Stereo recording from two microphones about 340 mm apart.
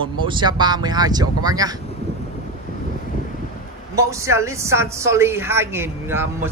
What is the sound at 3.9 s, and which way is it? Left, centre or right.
A woman's voice, centre.